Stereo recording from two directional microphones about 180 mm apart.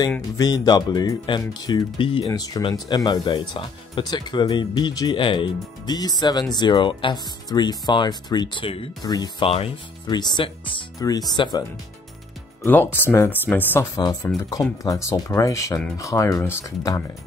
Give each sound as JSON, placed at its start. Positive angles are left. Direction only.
{"t": 0.4, "sound": "speech", "side_deg": 20}
{"t": 12.6, "sound": "speech", "side_deg": 10}